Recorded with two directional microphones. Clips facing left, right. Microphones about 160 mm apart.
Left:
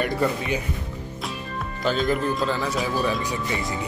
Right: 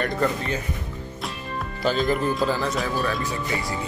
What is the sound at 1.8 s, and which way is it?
Speech, centre (ahead or behind).